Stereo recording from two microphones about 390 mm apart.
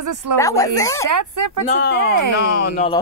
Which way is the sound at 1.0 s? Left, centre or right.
Right.